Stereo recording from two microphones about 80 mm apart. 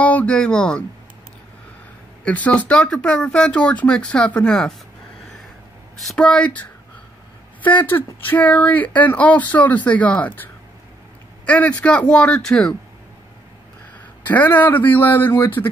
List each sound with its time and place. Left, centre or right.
0.0 s speech: centre
2.2 s speech: centre
6.1 s speech: centre
14.2 s speech: left